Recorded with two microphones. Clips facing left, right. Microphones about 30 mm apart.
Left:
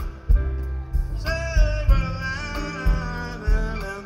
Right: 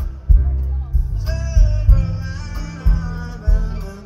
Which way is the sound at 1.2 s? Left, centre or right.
Left.